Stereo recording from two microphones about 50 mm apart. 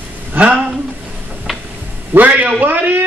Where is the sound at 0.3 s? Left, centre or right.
Right.